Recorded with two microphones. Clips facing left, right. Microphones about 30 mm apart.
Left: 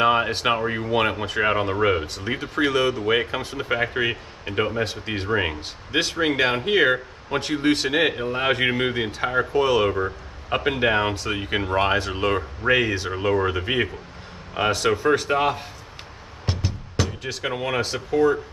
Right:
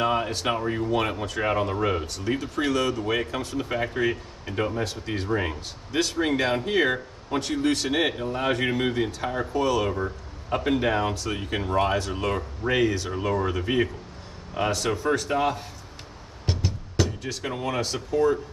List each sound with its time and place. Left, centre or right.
0.0 s speech: left
16.4 s music: centre
17.2 s speech: left